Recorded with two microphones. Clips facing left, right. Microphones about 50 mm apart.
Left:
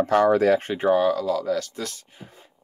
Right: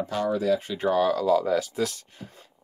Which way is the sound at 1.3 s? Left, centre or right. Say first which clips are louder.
Right 2 dB; centre.